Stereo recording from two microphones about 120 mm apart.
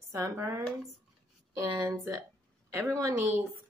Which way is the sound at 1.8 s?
25° right (ahead or behind).